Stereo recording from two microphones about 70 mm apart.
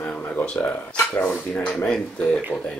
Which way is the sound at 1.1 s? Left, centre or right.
Left.